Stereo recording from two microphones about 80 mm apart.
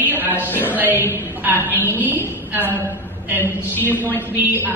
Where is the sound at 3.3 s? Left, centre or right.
Left.